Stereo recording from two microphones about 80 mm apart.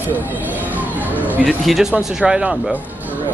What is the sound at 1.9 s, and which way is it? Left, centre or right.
Speech, centre.